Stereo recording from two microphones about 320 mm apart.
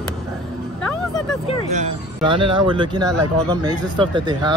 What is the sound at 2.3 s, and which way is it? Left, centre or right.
Speech, centre.